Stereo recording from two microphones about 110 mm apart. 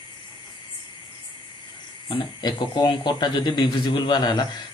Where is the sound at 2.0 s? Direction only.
45° left (ahead or behind).